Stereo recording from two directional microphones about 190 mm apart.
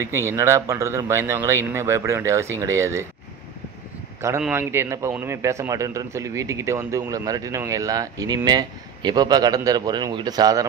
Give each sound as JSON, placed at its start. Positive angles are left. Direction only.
{"t": 0.0, "sound": "a man's voice", "side_deg": -15}
{"t": 4.4, "sound": "a man's voice", "side_deg": -10}